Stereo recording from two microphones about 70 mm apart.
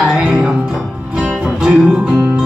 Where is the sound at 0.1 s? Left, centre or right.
Centre.